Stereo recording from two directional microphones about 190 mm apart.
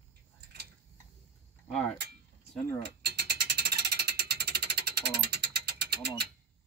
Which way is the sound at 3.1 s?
55° right (ahead or behind).